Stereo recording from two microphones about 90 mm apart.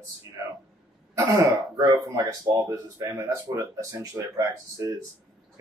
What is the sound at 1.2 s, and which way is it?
Speech, 40° right (ahead or behind).